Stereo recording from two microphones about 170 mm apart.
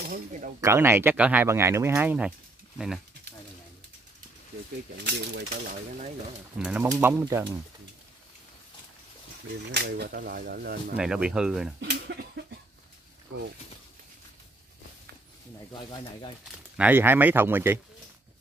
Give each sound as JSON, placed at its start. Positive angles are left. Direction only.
{"t": 0.1, "sound": "speech", "side_deg": -50}
{"t": 0.6, "sound": "speech", "side_deg": -15}
{"t": 4.9, "sound": "speech", "side_deg": -85}
{"t": 5.7, "sound": "speech", "side_deg": -50}
{"t": 6.6, "sound": "speech", "side_deg": -10}
{"t": 9.7, "sound": "speech", "side_deg": -70}
{"t": 11.0, "sound": "speech", "side_deg": -5}
{"t": 11.8, "sound": "a sound", "side_deg": -75}
{"t": 15.7, "sound": "speech", "side_deg": 25}
{"t": 16.7, "sound": "speech", "side_deg": -10}